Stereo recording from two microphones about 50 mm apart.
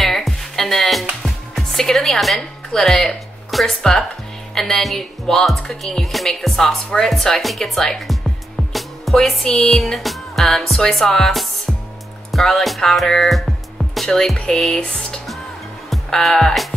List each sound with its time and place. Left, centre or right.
0.0 s music: centre
2.7 s speech: centre
12.3 s music: centre
14.3 s speech: centre
15.9 s music: centre